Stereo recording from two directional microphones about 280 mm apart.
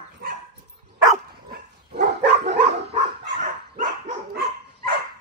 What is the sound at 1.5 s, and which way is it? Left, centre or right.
Dog, right.